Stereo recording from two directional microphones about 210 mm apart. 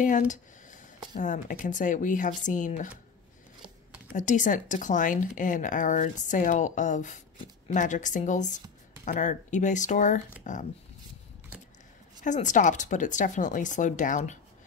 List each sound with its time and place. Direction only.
0.0 s speech: 35° left (ahead or behind)
4.1 s speech: 35° left (ahead or behind)
12.2 s speech: 35° left (ahead or behind)